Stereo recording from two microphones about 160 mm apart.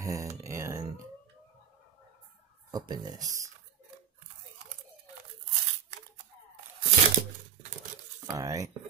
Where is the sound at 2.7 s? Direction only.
25° right (ahead or behind).